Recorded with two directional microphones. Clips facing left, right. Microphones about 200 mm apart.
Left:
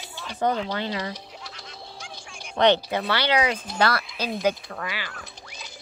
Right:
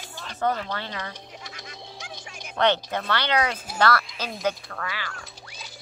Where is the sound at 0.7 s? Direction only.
15° left (ahead or behind).